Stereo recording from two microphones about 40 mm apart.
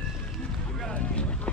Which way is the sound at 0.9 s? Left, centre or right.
Left.